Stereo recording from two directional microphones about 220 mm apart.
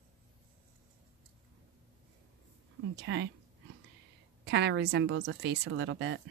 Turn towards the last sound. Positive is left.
turn(degrees=-55)  # may be behind; listen again after turning